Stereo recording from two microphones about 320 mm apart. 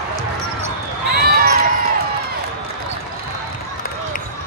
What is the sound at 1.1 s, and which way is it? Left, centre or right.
Basketball bounce, right.